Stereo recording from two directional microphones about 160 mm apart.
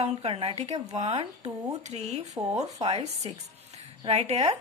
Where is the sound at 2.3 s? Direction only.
20° right (ahead or behind).